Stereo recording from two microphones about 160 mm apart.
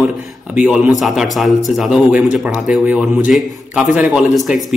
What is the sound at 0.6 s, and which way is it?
A man's voice, 5° right (ahead or behind).